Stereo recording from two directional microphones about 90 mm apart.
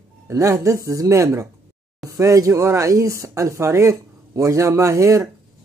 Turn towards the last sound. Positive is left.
turn(degrees=-35)  # may be behind; listen again after turning